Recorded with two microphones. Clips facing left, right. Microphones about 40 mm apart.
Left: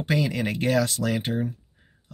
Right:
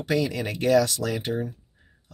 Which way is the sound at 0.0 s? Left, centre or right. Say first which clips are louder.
Even; left.